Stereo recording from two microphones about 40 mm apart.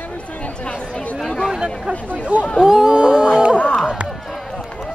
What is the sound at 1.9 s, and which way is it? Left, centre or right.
Speech, right.